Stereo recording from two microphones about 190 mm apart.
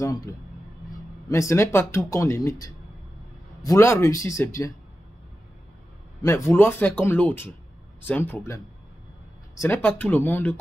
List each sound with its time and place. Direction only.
0.0 s speech: 20° left (ahead or behind)
1.3 s speech: 15° left (ahead or behind)
6.2 s speech: 15° left (ahead or behind)
9.6 s speech: 10° left (ahead or behind)